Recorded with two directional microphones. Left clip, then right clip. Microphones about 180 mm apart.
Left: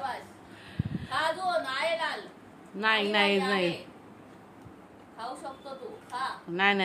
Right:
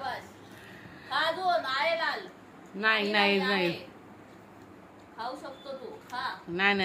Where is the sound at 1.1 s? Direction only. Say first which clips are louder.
Right 1 dB; 45° left (ahead or behind).